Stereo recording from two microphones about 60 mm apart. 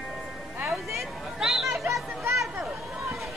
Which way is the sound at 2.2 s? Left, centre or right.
Right.